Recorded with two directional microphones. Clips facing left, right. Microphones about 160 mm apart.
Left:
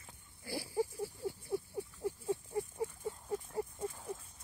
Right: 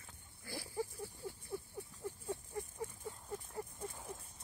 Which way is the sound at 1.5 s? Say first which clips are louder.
Left 7 dB; 15° left (ahead or behind).